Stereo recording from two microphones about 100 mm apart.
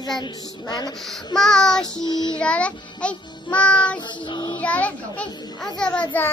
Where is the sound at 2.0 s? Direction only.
50° left (ahead or behind).